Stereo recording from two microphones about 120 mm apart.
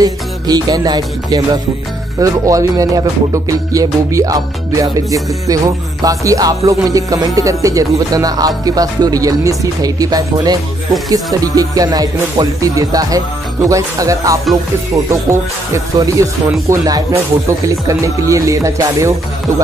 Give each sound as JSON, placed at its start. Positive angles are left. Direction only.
{"t": 0.0, "sound": "music", "side_deg": -30}